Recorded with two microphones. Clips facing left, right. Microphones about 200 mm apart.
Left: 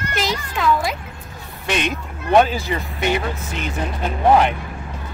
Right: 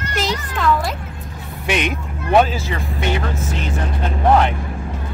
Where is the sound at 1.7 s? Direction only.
10° right (ahead or behind).